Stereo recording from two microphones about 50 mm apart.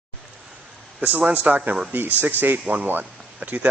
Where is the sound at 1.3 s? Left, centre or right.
Right.